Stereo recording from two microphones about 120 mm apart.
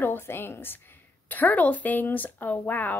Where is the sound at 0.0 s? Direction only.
20° left (ahead or behind).